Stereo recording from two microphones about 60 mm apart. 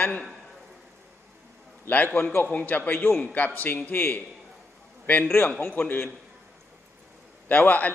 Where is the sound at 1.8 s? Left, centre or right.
Left.